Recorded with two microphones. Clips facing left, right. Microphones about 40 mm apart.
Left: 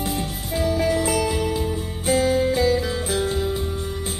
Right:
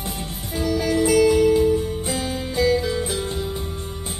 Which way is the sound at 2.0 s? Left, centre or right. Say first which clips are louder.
Left 7 dB; left.